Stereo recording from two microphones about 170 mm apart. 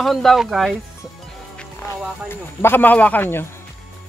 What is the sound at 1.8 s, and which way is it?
Speech, 15° left (ahead or behind).